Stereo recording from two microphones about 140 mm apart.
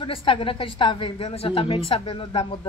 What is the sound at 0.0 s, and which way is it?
Speech, 40° left (ahead or behind).